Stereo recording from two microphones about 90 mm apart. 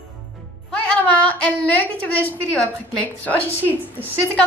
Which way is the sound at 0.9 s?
15° left (ahead or behind).